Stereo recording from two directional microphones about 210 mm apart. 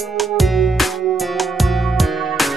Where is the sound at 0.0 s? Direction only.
Centre (ahead or behind).